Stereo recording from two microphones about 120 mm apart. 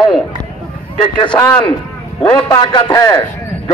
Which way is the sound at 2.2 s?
35° left (ahead or behind).